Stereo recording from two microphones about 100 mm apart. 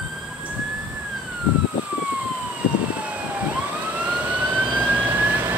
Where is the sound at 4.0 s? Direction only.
15° right (ahead or behind).